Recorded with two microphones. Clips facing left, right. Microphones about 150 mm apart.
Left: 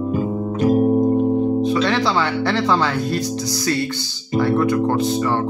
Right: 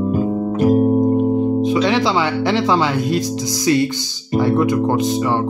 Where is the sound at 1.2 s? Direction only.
15° right (ahead or behind).